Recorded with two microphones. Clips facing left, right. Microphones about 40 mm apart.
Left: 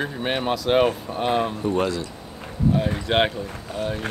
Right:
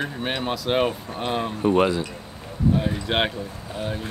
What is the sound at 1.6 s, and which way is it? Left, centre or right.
Speech, right.